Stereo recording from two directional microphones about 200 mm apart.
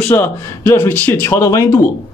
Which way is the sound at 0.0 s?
10° left (ahead or behind).